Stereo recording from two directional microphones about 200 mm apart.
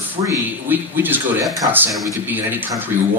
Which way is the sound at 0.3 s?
10° right (ahead or behind).